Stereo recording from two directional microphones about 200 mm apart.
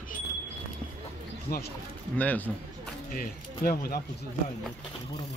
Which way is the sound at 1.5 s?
50° left (ahead or behind).